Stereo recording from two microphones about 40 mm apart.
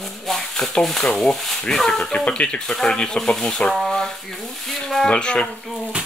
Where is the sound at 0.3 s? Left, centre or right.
Centre.